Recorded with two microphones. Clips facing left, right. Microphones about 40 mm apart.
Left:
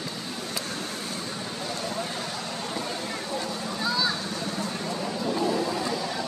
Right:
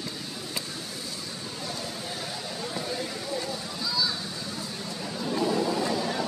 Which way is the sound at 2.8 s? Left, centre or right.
Left.